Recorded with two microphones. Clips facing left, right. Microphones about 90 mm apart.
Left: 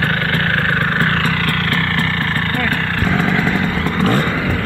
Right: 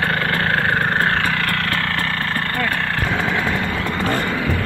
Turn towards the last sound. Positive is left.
turn(degrees=-15)  # may be behind; listen again after turning